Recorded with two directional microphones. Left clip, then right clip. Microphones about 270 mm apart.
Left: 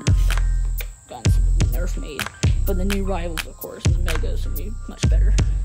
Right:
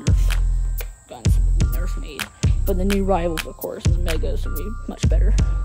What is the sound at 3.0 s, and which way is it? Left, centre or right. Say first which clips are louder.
Music: right 7 dB; right.